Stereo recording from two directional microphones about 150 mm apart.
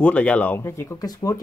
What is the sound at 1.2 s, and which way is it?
Speech, 20° left (ahead or behind).